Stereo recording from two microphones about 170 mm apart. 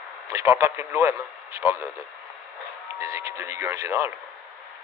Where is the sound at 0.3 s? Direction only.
15° right (ahead or behind).